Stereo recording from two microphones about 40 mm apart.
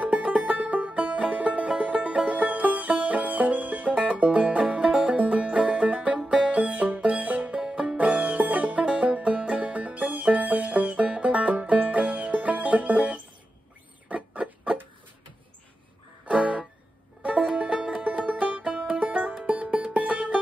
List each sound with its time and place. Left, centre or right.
0.0 s music: right
7.6 s music: centre
8.0 s music: right
8.8 s music: right
14.0 s rodents: right
16.3 s music: right
18.0 s music: right